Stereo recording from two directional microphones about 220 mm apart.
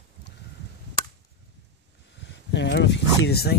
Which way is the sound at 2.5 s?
55° left (ahead or behind).